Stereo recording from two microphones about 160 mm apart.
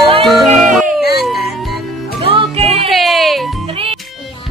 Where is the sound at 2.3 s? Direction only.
40° right (ahead or behind).